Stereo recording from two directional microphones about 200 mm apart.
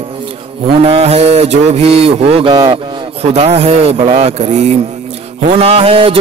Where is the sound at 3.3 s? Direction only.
30° right (ahead or behind).